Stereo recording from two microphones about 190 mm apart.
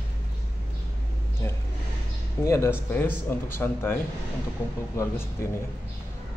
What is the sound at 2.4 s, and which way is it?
Speech, 15° left (ahead or behind).